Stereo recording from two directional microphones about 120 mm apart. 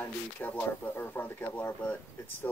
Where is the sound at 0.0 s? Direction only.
15° left (ahead or behind).